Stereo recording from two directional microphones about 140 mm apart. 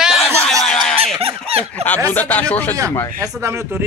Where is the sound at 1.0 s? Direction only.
45° right (ahead or behind).